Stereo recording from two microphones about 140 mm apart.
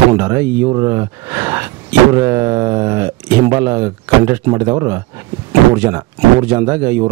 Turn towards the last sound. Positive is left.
turn(degrees=-15)  # may be behind; listen again after turning